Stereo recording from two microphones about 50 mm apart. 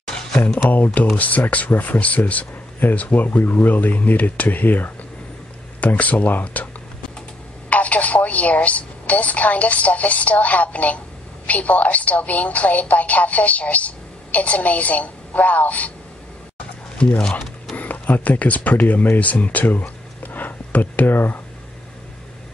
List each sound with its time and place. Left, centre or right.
0.1 s a sound: centre
0.7 s speech: left
7.7 s a woman's voice: left
17.0 s a woman's voice: left